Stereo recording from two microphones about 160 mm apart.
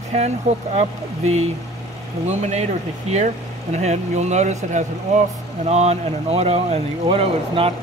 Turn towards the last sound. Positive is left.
turn(degrees=-35)  # may be behind; listen again after turning